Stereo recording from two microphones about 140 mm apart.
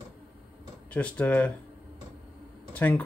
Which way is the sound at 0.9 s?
10° left (ahead or behind).